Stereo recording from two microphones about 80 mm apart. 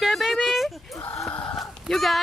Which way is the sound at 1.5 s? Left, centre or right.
Centre.